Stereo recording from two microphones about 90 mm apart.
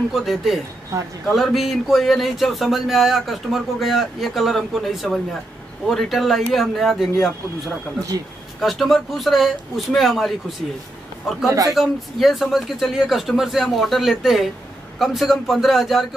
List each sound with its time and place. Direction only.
0.1 s speech: centre (ahead or behind)
0.9 s speech: 40° right (ahead or behind)
1.3 s speech: centre (ahead or behind)